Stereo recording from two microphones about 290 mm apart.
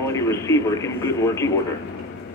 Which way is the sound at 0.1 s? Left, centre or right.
Centre.